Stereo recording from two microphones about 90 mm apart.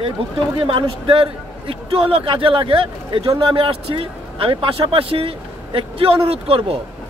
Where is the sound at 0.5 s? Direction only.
75° right (ahead or behind).